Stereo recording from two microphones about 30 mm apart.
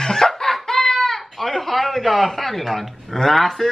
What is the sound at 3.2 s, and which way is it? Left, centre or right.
Speech, centre.